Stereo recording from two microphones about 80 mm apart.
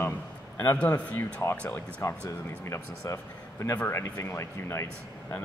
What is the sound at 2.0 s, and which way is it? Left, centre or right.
A man's voice, left.